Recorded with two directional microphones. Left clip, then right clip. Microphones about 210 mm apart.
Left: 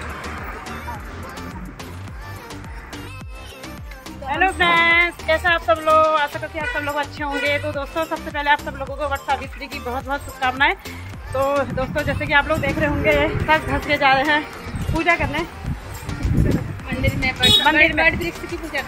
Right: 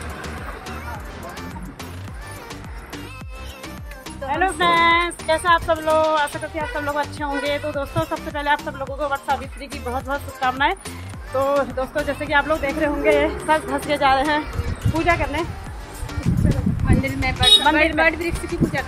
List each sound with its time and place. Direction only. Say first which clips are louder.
4.3 s speech: left 1 dB; centre (ahead or behind)
16.1 s music: left 1 dB; centre (ahead or behind)
17.0 s speech: left 4 dB; 15° right (ahead or behind)
17.8 s speech: left 1 dB; centre (ahead or behind)